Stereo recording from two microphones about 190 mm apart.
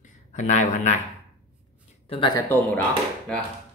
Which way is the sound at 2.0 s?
25° left (ahead or behind).